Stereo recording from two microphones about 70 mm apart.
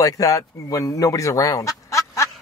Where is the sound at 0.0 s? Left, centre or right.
Left.